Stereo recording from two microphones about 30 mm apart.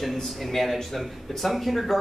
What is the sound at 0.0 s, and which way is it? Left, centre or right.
A man's voice, centre.